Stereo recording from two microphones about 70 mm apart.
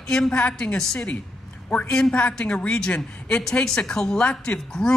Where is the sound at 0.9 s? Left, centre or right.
Left.